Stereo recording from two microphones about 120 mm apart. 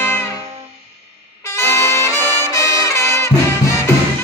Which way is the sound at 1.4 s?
25° left (ahead or behind).